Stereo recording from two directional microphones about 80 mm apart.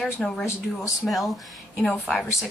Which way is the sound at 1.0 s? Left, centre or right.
Centre.